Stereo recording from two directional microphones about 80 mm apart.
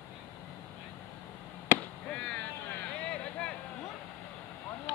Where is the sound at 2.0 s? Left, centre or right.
Centre.